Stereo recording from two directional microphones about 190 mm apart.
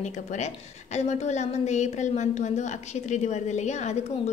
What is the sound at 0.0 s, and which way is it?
A woman's voice, 40° left (ahead or behind).